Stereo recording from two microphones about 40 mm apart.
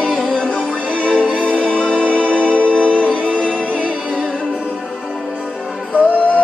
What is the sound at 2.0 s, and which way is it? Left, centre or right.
Music, left.